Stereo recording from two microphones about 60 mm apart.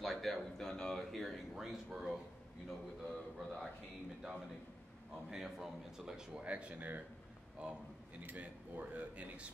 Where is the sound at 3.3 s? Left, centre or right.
Centre.